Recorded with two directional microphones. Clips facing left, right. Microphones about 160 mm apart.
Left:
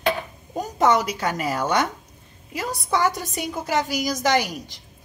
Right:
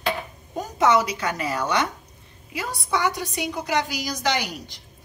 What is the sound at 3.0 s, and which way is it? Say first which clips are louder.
A woman's voice: left 1 dB; 40° left (ahead or behind).